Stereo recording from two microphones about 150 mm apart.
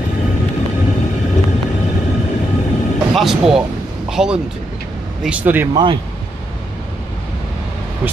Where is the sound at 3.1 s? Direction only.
Centre (ahead or behind).